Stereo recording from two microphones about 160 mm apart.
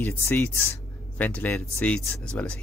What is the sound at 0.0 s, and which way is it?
Speech, 15° left (ahead or behind).